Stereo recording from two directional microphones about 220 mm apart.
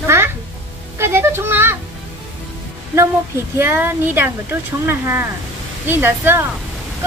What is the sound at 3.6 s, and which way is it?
Speech, 10° right (ahead or behind).